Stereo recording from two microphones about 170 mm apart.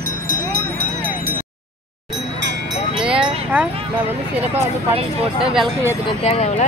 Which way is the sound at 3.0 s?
5° right (ahead or behind).